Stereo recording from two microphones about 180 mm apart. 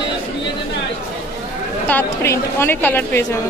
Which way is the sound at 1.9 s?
10° left (ahead or behind).